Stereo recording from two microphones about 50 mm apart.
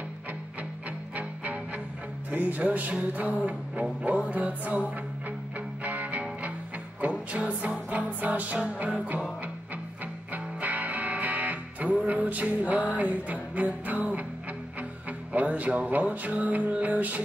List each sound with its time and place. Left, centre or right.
1.1 s music: right
2.3 s speech: right
4.0 s music: right
10.3 s music: right